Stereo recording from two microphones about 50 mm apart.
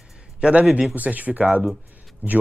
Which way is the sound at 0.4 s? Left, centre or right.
Right.